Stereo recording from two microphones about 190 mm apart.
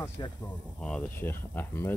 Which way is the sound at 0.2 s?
25° left (ahead or behind).